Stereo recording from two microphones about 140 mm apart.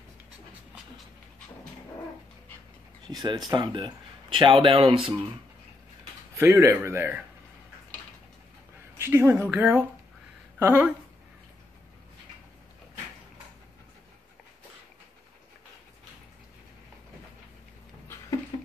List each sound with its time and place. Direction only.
3.1 s a man's voice: 30° right (ahead or behind)
6.3 s a man's voice: 20° right (ahead or behind)
8.9 s speech: 15° right (ahead or behind)